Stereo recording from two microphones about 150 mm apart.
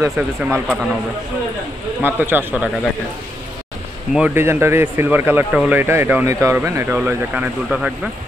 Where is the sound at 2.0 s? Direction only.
15° right (ahead or behind).